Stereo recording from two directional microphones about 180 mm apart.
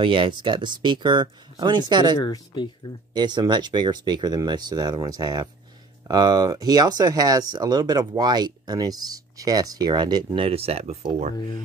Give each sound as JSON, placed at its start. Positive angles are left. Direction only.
{"t": 0.0, "sound": "speech", "side_deg": -30}
{"t": 2.1, "sound": "speech", "side_deg": 20}
{"t": 3.1, "sound": "speech", "side_deg": -25}
{"t": 11.3, "sound": "speech", "side_deg": 25}